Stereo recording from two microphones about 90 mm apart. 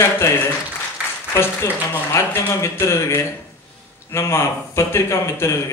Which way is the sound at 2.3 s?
30° left (ahead or behind).